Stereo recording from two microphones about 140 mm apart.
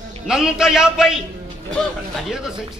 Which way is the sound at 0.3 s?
5° right (ahead or behind).